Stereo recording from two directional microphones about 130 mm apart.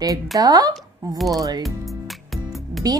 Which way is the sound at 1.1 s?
Centre (ahead or behind).